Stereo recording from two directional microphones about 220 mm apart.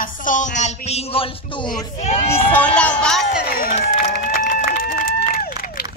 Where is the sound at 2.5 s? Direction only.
5° left (ahead or behind).